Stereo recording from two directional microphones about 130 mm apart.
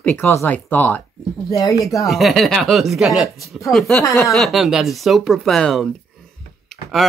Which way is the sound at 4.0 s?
20° left (ahead or behind).